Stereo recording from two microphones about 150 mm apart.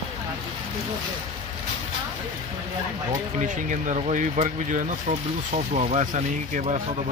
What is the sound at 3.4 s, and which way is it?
Speech, 55° right (ahead or behind).